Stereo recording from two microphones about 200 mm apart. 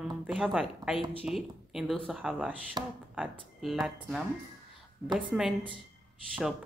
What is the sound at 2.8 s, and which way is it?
Speech, 20° right (ahead or behind).